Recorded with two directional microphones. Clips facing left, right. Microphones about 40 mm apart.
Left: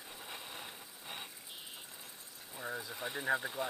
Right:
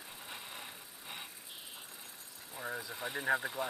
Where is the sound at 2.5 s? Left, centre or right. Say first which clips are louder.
Right 1 dB; centre.